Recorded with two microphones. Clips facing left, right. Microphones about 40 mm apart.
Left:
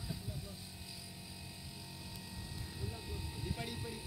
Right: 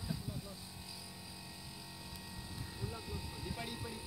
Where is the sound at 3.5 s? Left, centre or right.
Centre.